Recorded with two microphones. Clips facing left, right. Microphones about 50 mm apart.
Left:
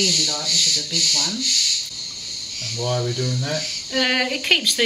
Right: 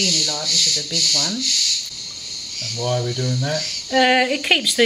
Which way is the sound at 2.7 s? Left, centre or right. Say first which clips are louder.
Right 1 dB; centre.